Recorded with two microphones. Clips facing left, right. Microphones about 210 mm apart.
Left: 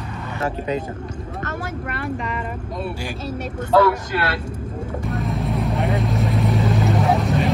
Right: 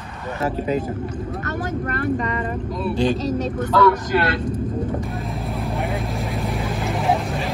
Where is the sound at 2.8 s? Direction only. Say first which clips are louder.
Right 9 dB; 10° left (ahead or behind).